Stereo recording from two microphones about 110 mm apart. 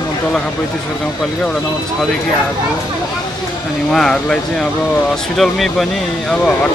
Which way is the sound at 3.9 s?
5° left (ahead or behind).